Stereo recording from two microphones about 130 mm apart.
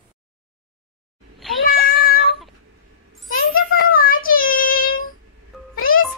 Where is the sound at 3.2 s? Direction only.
90° left.